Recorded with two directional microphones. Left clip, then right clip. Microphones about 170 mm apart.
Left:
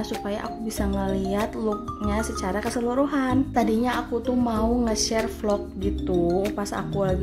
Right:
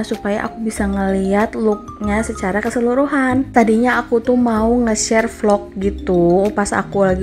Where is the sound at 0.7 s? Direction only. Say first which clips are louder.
Right 8 dB; 30° right (ahead or behind).